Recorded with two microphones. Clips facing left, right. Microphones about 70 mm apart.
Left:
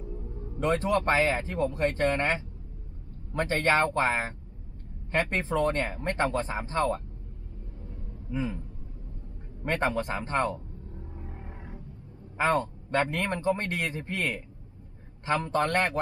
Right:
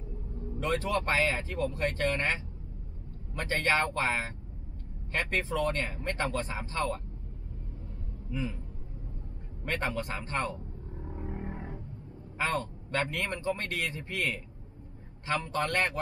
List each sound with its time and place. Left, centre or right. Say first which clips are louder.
0.6 s speech: left 4 dB; left
3.3 s a man's voice: left 4 dB; left
8.3 s a man's voice: left 3 dB; left
9.7 s speech: left 5 dB; left
11.0 s a sound: right 8 dB; right
12.4 s a man's voice: left 6 dB; left